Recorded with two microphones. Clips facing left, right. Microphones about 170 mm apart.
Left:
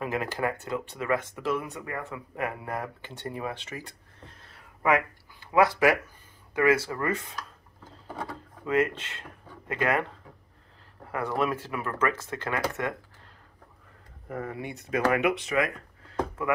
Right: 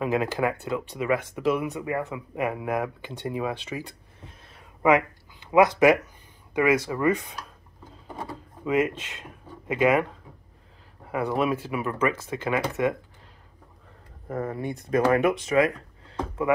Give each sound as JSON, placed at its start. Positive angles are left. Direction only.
{"t": 0.0, "sound": "speech", "side_deg": -20}
{"t": 4.3, "sound": "a sound", "side_deg": -15}
{"t": 6.5, "sound": "speech", "side_deg": -15}
{"t": 8.6, "sound": "speech", "side_deg": -15}
{"t": 11.1, "sound": "speech", "side_deg": -15}
{"t": 14.3, "sound": "speech", "side_deg": -40}